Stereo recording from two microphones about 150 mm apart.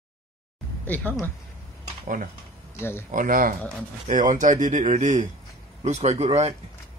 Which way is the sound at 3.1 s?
65° right (ahead or behind).